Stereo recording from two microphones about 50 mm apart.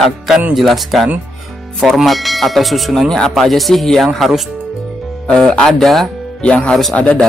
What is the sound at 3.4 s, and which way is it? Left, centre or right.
Speech, centre.